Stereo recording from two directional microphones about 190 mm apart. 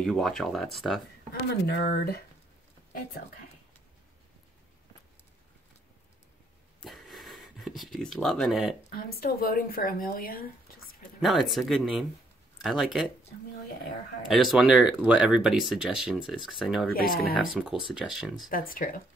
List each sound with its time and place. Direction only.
0.0 s speech: centre (ahead or behind)
1.5 s speech: 60° left (ahead or behind)
6.8 s a sound: centre (ahead or behind)
8.9 s speech: 50° left (ahead or behind)
11.1 s speech: centre (ahead or behind)
14.3 s speech: centre (ahead or behind)
16.9 s speech: 50° left (ahead or behind)
17.6 s speech: 5° right (ahead or behind)
18.5 s speech: 50° left (ahead or behind)